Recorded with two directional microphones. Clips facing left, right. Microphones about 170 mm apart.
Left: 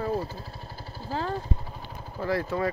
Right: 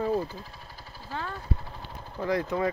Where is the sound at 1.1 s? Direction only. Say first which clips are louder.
Left 6 dB; 30° left (ahead or behind).